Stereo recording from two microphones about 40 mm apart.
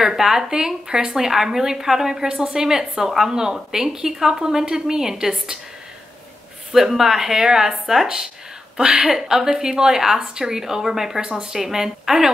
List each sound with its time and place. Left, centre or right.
0.0 s a woman's voice: centre
6.7 s a woman's voice: centre
8.7 s a woman's voice: right
9.0 s a woman's voice: centre
11.2 s speech: right
11.5 s a woman's voice: centre